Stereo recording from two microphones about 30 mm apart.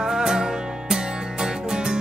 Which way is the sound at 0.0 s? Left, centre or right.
Centre.